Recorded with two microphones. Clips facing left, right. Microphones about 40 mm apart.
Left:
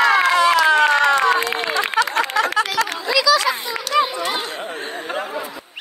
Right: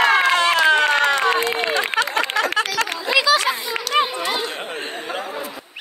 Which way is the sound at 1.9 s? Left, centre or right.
Right.